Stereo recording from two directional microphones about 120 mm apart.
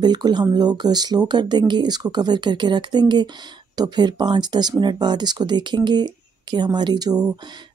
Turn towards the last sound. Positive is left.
turn(degrees=-40)  # may be behind; listen again after turning